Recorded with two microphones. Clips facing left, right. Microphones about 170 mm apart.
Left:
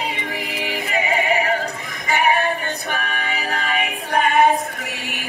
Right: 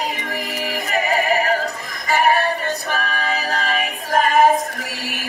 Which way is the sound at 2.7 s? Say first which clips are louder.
Right 2 dB; 40° right (ahead or behind).